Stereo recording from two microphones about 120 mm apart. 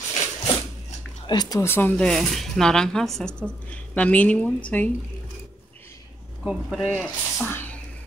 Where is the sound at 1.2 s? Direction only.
35° left (ahead or behind).